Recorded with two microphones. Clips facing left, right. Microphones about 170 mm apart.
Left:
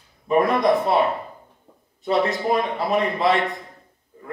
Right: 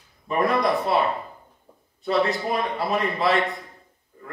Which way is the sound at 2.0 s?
20° left (ahead or behind).